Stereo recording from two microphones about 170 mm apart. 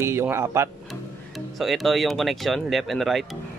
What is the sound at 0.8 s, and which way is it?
Speech, centre (ahead or behind).